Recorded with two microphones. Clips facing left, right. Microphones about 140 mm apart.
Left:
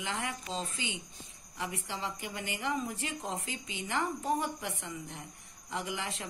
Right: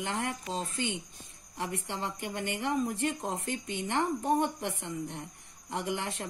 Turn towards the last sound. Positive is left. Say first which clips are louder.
# right 3 dB
turn(degrees=-60)  # may be behind; listen again after turning